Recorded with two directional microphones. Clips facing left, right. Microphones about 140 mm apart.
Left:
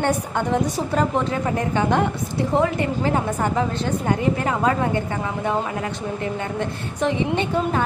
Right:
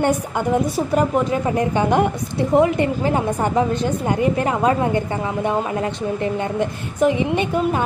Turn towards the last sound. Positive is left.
turn(degrees=-15)  # may be behind; listen again after turning